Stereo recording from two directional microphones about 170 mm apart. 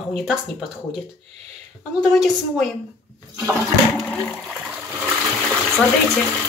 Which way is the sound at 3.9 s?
5° left (ahead or behind).